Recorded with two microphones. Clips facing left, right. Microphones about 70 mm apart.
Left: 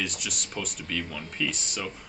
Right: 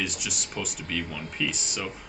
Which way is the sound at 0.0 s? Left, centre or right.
Centre.